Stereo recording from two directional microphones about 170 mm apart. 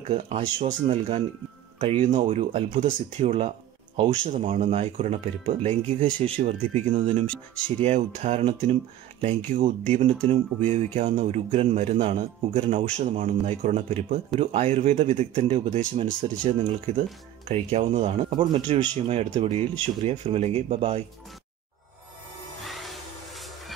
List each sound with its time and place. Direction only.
0.1 s speech: 40° right (ahead or behind)
22.6 s music: centre (ahead or behind)